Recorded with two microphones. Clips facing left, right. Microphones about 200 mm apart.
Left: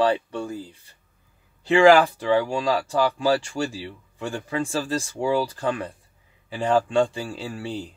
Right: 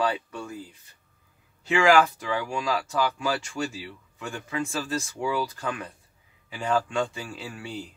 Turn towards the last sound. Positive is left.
turn(degrees=35)  # may be behind; listen again after turning